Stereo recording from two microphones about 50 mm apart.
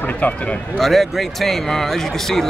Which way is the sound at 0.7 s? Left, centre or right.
Centre.